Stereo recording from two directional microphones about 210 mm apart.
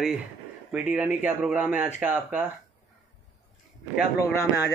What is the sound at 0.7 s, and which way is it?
Speech, 5° right (ahead or behind).